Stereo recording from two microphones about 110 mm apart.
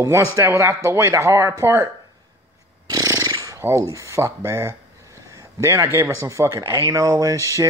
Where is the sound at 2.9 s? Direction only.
35° right (ahead or behind).